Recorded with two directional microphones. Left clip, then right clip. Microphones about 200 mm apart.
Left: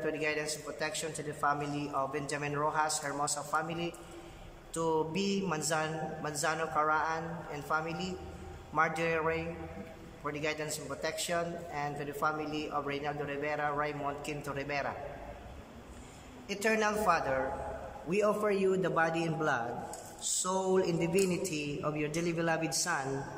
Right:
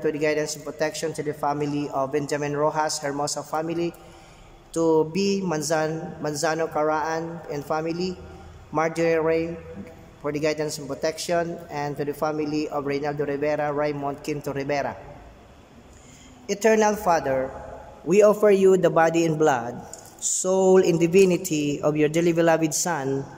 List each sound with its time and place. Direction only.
0.0 s a man's voice: 30° right (ahead or behind)
16.4 s speech: 30° right (ahead or behind)
18.0 s speech: 40° right (ahead or behind)